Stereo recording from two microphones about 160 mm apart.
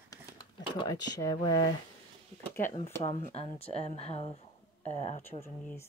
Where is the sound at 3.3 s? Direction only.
35° left (ahead or behind).